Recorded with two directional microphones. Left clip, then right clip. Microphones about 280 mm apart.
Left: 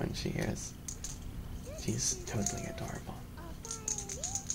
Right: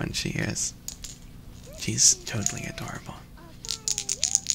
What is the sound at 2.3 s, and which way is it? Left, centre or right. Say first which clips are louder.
Speech: right 6 dB; right.